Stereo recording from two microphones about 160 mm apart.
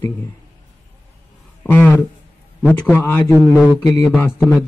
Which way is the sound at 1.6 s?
10° left (ahead or behind).